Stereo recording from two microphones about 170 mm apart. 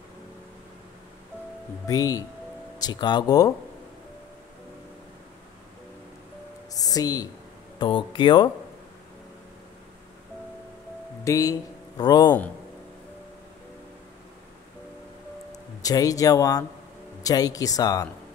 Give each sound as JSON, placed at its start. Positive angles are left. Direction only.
{"t": 1.9, "sound": "speech", "side_deg": 20}
{"t": 6.7, "sound": "a sound", "side_deg": 20}
{"t": 7.8, "sound": "speech", "side_deg": 30}
{"t": 11.2, "sound": "speech", "side_deg": 20}
{"t": 15.5, "sound": "speech", "side_deg": 20}